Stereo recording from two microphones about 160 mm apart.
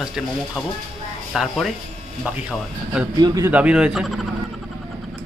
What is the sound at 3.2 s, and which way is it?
Speech, 25° right (ahead or behind).